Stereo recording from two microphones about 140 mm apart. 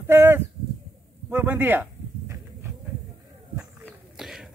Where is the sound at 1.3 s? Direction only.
15° right (ahead or behind).